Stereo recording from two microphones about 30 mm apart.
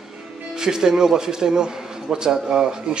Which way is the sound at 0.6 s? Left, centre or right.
Centre.